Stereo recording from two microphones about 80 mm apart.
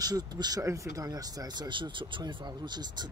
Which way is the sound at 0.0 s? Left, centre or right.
Right.